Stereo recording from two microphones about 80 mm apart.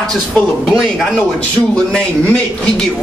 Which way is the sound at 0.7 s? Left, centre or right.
Centre.